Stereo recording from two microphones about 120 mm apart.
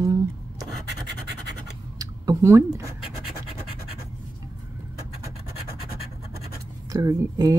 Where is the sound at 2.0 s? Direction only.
25° right (ahead or behind).